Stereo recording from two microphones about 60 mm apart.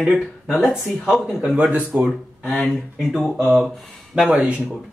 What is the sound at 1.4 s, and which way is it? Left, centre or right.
Speech, centre.